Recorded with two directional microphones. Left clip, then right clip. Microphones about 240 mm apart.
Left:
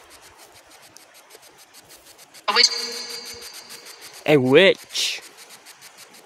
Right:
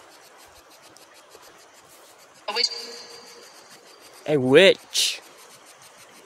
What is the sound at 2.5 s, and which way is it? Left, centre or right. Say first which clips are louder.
Music: left 8 dB; left.